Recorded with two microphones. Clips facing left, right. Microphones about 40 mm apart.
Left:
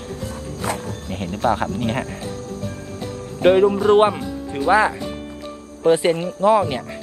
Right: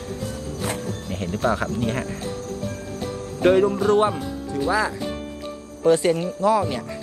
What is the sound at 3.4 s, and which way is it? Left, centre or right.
Speech, left.